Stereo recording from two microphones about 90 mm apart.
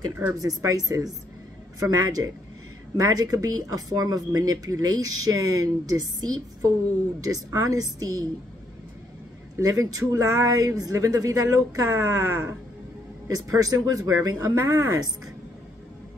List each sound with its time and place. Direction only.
0.4 s a woman's voice: 40° right (ahead or behind)
9.6 s speech: 40° right (ahead or behind)
13.3 s speech: 40° right (ahead or behind)